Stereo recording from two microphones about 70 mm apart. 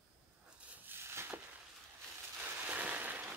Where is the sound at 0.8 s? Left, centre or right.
Right.